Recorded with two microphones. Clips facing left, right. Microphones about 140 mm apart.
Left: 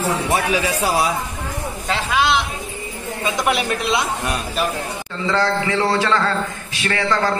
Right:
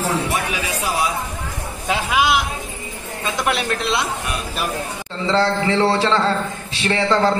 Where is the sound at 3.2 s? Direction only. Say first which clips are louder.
Left 1 dB; centre (ahead or behind).